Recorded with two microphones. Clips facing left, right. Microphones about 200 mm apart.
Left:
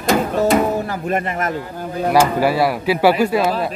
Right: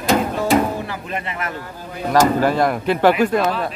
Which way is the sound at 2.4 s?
5° left (ahead or behind).